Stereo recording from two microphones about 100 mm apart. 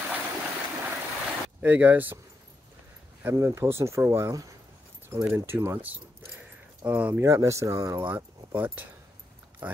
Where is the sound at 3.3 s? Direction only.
30° right (ahead or behind); by 7.2 s 15° right (ahead or behind).